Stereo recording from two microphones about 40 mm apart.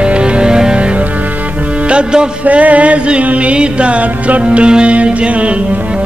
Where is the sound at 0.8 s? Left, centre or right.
Right.